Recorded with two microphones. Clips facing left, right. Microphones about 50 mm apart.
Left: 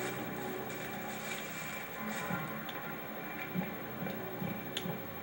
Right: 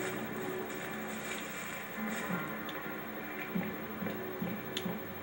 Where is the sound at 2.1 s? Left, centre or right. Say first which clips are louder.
Even; centre.